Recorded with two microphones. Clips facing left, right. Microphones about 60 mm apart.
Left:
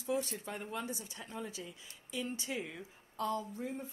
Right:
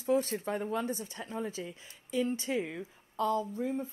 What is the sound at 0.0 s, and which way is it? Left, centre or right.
A woman's voice, right.